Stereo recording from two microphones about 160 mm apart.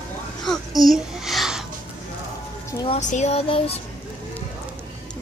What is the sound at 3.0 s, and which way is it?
Child singing, 45° left (ahead or behind).